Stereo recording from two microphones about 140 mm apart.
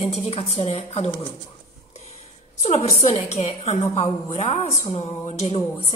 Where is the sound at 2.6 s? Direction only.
50° left (ahead or behind).